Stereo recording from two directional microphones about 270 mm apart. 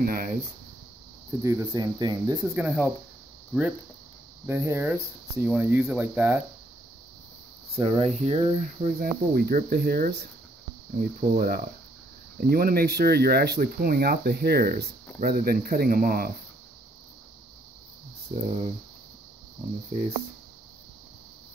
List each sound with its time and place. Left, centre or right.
0.0 s speech: right
1.4 s speech: centre
2.4 s speech: centre
4.5 s speech: centre
7.7 s speech: right
18.3 s speech: right